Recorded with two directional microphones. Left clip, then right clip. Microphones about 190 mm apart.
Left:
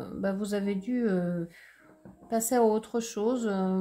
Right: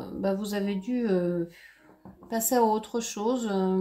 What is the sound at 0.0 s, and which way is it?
Speech, 30° left (ahead or behind).